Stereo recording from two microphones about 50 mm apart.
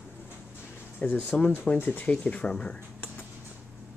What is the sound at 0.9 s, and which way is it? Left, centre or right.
Speech, left.